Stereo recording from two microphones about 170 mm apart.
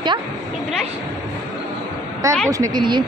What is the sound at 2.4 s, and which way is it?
Speech, 20° right (ahead or behind).